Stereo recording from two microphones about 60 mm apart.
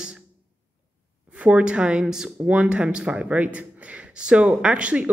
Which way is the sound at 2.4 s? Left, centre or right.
Right.